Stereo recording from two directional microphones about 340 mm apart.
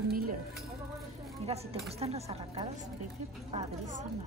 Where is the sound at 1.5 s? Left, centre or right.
Centre.